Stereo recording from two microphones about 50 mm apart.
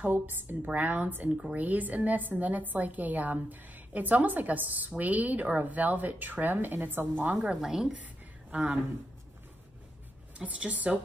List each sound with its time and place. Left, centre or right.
0.0 s a woman's voice: right
1.3 s speech: right
1.6 s a woman's voice: right
7.6 s a woman's voice: centre
7.9 s a sound: right
10.4 s speech: right